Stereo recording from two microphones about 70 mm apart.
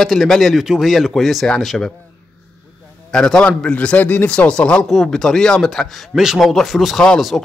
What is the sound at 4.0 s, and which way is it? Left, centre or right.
Speech, left.